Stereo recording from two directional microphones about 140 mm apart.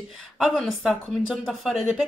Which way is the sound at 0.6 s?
Centre (ahead or behind).